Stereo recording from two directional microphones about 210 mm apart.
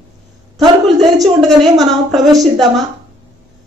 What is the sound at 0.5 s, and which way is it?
Speech, 20° right (ahead or behind).